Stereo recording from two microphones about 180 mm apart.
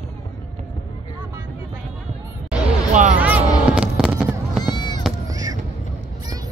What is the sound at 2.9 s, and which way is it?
Speech, 45° right (ahead or behind).